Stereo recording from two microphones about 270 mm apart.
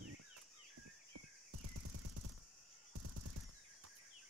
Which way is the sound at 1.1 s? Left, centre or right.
Right.